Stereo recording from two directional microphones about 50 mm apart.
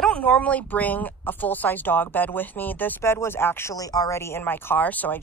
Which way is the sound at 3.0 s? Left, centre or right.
Left.